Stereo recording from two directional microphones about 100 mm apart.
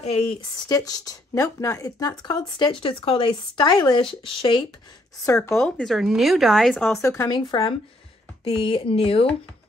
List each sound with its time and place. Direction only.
0.0 s speech: 90° left
0.7 s speech: 35° left (ahead or behind); by 4.6 s 55° left (ahead or behind)
5.2 s speech: 30° left (ahead or behind)
5.6 s speech: 5° left (ahead or behind)
7.0 s speech: 30° left (ahead or behind)
7.5 s speech: 55° left (ahead or behind)
8.5 s speech: 70° left (ahead or behind)